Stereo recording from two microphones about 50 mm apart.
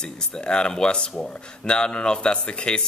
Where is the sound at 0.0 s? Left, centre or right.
Centre.